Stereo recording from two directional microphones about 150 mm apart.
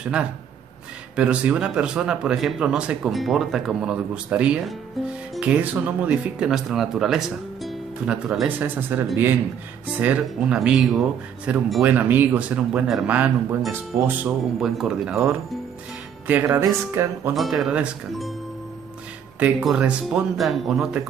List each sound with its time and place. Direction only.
0.0 s speech: 5° right (ahead or behind)
14.6 s speech: 5° right (ahead or behind); by 17.3 s 20° right (ahead or behind)
17.3 s speech: centre (ahead or behind)
19.4 s speech: 5° right (ahead or behind)